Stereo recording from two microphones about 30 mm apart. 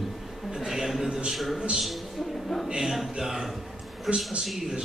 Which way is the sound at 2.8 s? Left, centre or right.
Centre.